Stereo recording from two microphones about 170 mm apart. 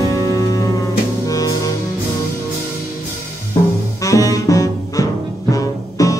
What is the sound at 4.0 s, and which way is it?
Music, 20° left (ahead or behind).